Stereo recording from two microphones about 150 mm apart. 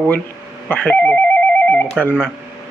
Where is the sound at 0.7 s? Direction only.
10° left (ahead or behind).